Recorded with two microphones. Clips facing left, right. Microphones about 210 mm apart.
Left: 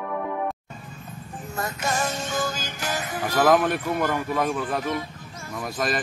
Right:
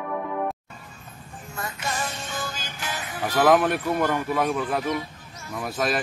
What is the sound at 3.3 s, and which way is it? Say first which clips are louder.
Speech: right 1 dB; centre (ahead or behind).